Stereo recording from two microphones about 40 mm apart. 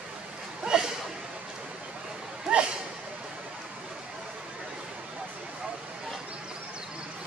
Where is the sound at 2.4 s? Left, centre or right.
Right.